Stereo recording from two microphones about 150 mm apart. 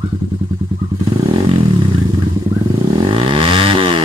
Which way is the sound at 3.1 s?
35° right (ahead or behind).